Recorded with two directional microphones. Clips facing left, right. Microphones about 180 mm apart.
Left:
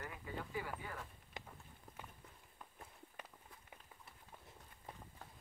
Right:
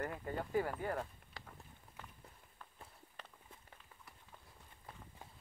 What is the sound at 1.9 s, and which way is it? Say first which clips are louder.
Run: left 2 dB; 45° left (ahead or behind).